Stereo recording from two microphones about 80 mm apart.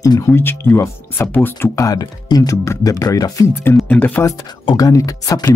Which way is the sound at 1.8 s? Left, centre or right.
Left.